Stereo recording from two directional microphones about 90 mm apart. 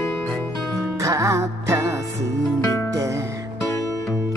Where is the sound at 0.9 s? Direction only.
35° right (ahead or behind).